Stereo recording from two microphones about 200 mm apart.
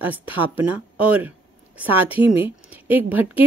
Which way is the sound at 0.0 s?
10° right (ahead or behind).